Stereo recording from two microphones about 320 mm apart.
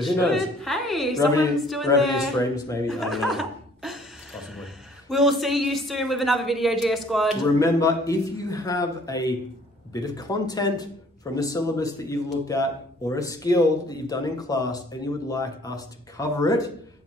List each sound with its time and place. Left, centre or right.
0.0 s speech: centre
2.5 s chuckle: centre
5.1 s speech: centre